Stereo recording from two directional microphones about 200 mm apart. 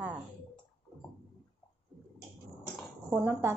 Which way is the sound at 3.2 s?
10° right (ahead or behind).